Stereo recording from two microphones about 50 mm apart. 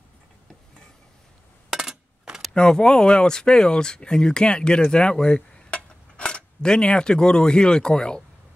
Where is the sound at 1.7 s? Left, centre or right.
Centre.